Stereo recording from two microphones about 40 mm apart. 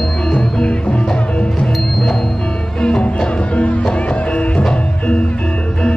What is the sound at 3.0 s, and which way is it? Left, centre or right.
Music, left.